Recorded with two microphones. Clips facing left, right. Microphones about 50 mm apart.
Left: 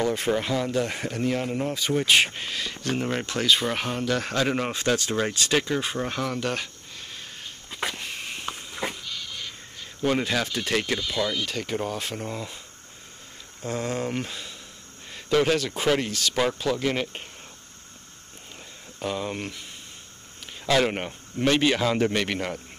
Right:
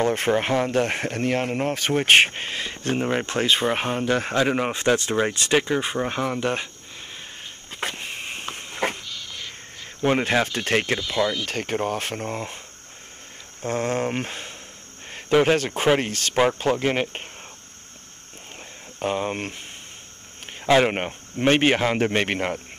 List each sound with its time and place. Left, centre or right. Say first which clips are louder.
0.0 s speech: right 3 dB; right
3.3 s a man's voice: even; right
8.0 s a sound: right 1 dB; right
10.2 s a man's voice: right 4 dB; right
11.1 s speech: right 5 dB; right
11.4 s speech: right 3 dB; right
13.6 s speech: right 4 dB; right
15.0 s a sound: right 3 dB; right
15.5 s a man's voice: right 3 dB; right
18.9 s a man's voice: right 4 dB; right
20.6 s a man's voice: right 4 dB; right